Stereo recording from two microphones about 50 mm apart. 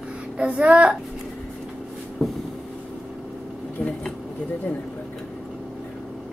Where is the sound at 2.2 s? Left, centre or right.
Centre.